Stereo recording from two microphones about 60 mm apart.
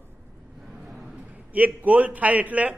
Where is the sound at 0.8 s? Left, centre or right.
Centre.